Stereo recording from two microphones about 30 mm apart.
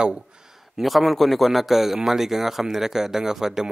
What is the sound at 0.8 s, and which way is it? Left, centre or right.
A man's voice, centre.